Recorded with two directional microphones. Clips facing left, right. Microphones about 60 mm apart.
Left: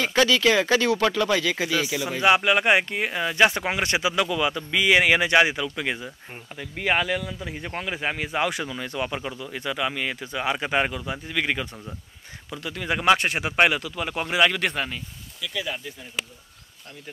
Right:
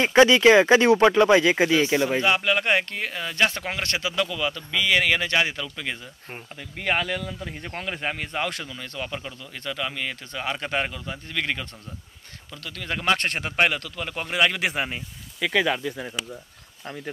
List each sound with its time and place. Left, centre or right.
0.0 s speech: right
2.2 s speech: centre
15.4 s speech: right